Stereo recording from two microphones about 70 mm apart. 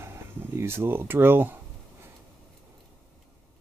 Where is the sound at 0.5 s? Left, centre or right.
Right.